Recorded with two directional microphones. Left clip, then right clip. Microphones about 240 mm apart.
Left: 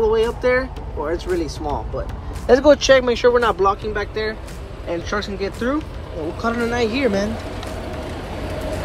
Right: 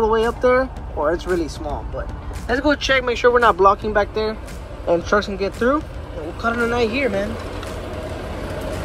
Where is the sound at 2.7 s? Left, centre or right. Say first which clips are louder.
Left 5 dB; left.